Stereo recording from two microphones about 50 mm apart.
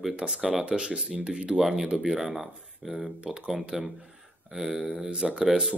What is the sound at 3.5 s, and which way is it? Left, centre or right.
Speech, centre.